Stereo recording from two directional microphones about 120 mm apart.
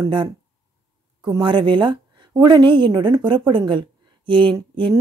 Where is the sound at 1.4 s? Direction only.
40° right (ahead or behind).